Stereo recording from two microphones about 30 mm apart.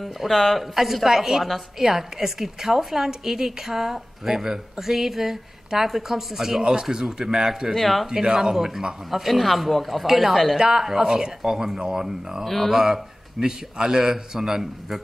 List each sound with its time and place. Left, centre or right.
0.0 s speech: centre
1.4 s speech: centre
1.9 s speech: centre
6.6 s a man's voice: right
7.7 s speech: centre
8.1 s a man's voice: centre
10.8 s speech: centre
12.4 s speech: centre
12.7 s speech: centre